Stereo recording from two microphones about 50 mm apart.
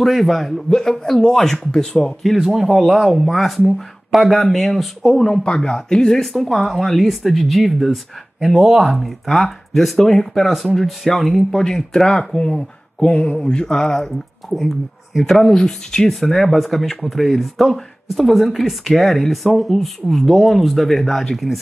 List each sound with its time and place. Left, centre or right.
0.0 s a man's voice: centre
2.3 s a man's voice: centre
11.5 s a man's voice: centre
15.2 s a man's voice: centre
16.1 s speech: centre